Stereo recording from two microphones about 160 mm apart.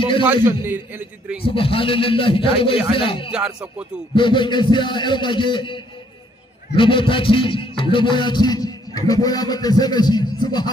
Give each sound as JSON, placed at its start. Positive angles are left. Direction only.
{"t": 0.3, "sound": "a man's voice", "side_deg": -10}
{"t": 1.4, "sound": "a man's voice", "side_deg": 35}
{"t": 3.3, "sound": "speech", "side_deg": -5}
{"t": 4.1, "sound": "a man's voice", "side_deg": 30}